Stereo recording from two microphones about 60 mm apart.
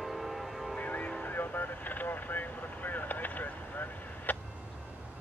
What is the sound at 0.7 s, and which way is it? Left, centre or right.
Vehicle, left.